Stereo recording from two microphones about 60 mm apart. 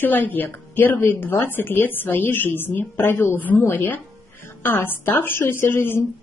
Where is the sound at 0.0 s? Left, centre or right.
Left.